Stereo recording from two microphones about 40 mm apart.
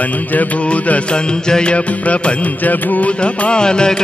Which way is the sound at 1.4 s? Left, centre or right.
Centre.